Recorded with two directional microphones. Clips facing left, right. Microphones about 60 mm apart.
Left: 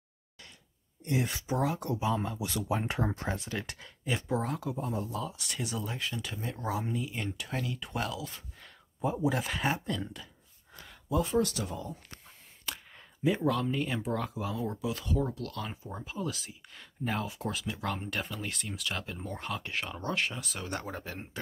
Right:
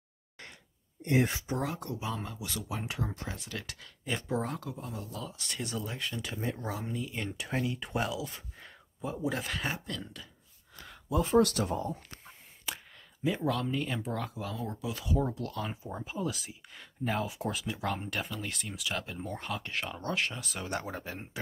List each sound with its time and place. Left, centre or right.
1.5 s speech: centre
3.0 s speech: left
3.5 s speech: left
4.0 s speech: centre
4.7 s speech: left
5.2 s speech: centre
7.3 s speech: centre
9.3 s speech: centre
11.3 s speech: right
11.7 s speech: right
13.2 s speech: centre
15.1 s speech: centre
15.5 s speech: centre